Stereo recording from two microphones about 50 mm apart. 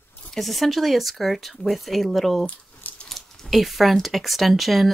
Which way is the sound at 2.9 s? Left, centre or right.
Left.